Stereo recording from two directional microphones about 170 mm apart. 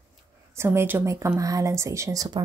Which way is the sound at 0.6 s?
15° right (ahead or behind).